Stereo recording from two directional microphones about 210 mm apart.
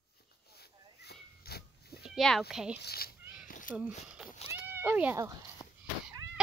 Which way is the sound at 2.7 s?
50° left (ahead or behind).